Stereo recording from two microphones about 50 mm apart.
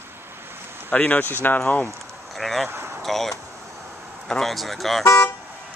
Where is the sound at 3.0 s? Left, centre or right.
Centre.